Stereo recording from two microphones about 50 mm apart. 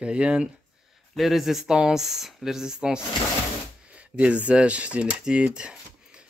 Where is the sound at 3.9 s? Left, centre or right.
Right.